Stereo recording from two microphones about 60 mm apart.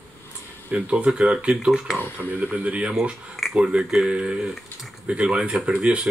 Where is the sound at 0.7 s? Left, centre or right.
Right.